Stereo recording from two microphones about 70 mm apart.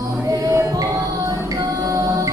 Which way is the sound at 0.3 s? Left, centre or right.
Right.